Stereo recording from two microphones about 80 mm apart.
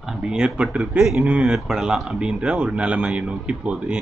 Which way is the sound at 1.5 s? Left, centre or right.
Centre.